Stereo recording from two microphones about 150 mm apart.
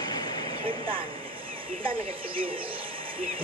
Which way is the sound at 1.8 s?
35° right (ahead or behind).